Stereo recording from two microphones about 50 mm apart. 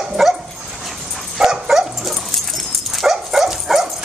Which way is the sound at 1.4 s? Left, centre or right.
Centre.